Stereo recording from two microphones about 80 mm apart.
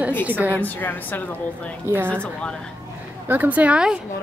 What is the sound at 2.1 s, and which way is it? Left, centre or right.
Speech, centre.